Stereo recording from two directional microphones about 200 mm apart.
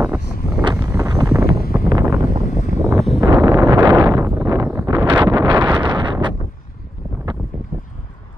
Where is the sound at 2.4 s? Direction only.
40° left (ahead or behind).